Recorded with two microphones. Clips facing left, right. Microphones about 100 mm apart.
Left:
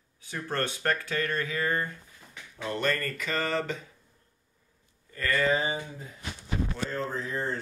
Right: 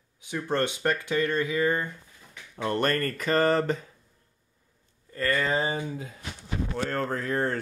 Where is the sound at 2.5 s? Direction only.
55° right (ahead or behind).